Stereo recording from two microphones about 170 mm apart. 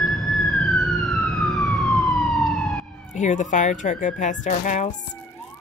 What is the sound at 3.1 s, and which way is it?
A woman's voice, 45° left (ahead or behind).